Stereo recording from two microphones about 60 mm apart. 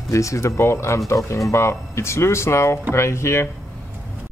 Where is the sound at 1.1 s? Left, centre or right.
Left.